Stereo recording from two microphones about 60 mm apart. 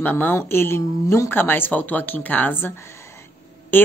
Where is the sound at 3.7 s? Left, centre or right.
Left.